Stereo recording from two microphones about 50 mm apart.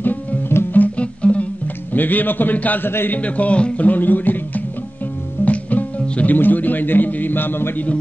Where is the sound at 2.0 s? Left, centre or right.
Left.